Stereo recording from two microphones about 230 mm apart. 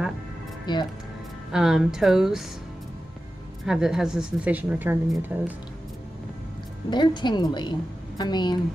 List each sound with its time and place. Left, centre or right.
0.7 s a woman's voice: centre
1.5 s speech: centre
3.6 s speech: centre
6.9 s a woman's voice: centre